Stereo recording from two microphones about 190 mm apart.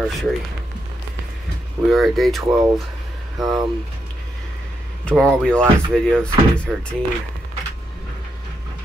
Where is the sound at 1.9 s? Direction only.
Centre (ahead or behind).